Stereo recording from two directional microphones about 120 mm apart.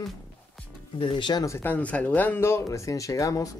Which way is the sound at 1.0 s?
45° left (ahead or behind).